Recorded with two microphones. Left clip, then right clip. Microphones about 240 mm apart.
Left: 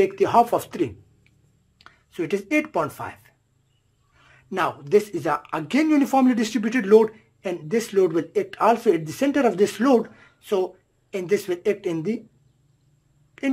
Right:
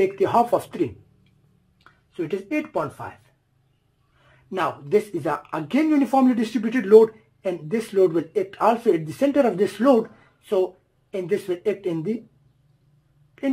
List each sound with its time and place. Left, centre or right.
0.0 s speech: centre
1.8 s speech: centre
4.5 s speech: centre